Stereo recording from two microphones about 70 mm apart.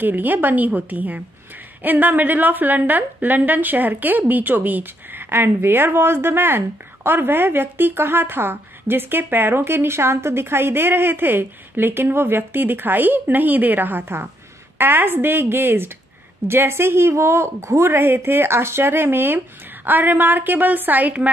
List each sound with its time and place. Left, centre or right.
0.0 s a woman's voice: right